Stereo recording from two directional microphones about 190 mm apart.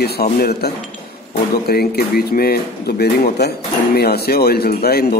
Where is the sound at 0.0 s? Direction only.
55° left (ahead or behind).